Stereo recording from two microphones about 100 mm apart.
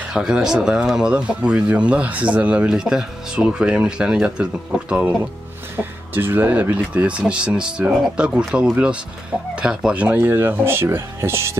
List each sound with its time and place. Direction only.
0.1 s speech: 5° right (ahead or behind); by 11.5 s 25° right (ahead or behind)